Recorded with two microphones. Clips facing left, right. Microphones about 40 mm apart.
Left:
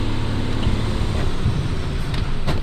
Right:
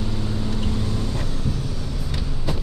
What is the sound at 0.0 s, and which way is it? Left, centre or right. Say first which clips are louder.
Vehicle: left 2 dB; left.